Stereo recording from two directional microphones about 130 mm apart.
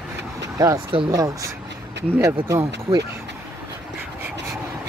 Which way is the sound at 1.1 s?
25° right (ahead or behind).